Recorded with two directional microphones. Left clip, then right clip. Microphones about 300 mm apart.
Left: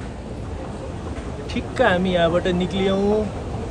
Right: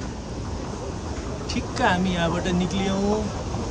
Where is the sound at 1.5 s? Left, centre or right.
Centre.